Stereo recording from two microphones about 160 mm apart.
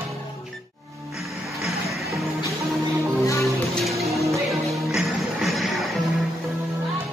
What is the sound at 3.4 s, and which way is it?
Music, centre (ahead or behind).